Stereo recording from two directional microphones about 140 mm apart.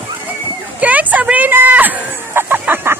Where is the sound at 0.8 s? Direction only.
10° right (ahead or behind).